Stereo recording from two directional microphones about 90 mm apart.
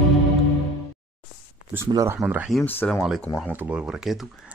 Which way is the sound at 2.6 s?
25° left (ahead or behind).